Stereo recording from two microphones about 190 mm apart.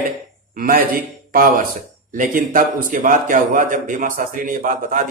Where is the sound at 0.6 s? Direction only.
50° right (ahead or behind).